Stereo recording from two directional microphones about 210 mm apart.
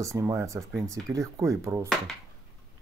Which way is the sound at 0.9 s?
15° right (ahead or behind).